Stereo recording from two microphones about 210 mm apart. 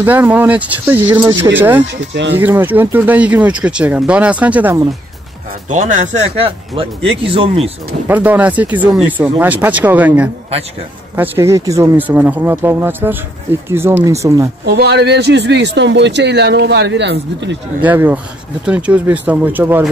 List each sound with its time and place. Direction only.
0.0 s speech: 10° right (ahead or behind)
2.0 s speech: 60° right (ahead or behind)
2.3 s speech: 10° right (ahead or behind)
5.7 s speech: 35° right (ahead or behind)
8.1 s speech: 10° right (ahead or behind)
14.7 s speech: 55° right (ahead or behind)
17.8 s speech: 10° right (ahead or behind)